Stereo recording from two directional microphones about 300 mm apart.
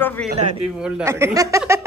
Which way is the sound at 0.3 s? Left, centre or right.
Right.